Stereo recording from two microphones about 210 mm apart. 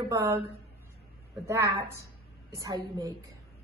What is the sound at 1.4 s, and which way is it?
Speech, 15° right (ahead or behind).